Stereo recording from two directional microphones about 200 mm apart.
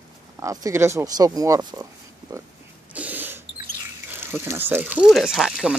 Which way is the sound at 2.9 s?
10° right (ahead or behind).